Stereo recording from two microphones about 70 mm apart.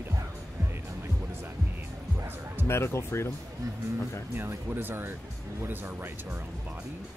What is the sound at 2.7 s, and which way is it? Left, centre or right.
Speech, left.